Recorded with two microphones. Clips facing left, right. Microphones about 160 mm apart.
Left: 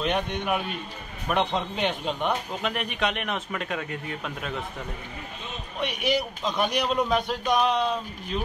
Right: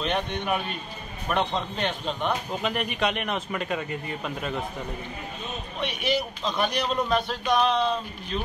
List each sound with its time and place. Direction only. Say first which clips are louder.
0.0 s speech: left 1 dB; 10° left (ahead or behind)
2.6 s a man's voice: right 1 dB; centre (ahead or behind)
5.8 s speech: left 1 dB; 10° left (ahead or behind)